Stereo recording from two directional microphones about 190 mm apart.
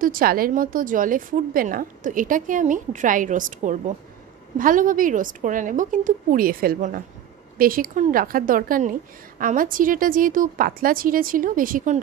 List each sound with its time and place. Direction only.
0.0 s a woman's voice: 50° right (ahead or behind)